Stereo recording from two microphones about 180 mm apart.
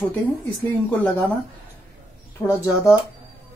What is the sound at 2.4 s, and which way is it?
Speech, 15° left (ahead or behind).